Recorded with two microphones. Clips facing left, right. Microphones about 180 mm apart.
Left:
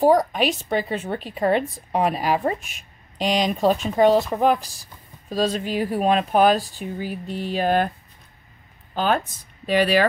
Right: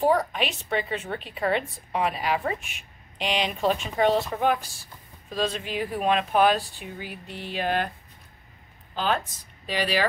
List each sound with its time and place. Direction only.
0.0 s a woman's voice: 40° left (ahead or behind)
8.9 s speech: 50° left (ahead or behind)